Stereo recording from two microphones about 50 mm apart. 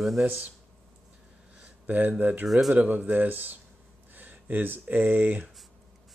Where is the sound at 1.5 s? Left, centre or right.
Right.